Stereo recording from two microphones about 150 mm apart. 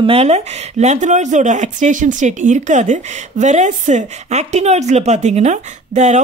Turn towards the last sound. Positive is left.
turn(degrees=-50)  # may be behind; listen again after turning